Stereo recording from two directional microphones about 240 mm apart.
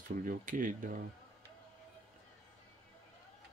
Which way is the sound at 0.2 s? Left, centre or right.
Right.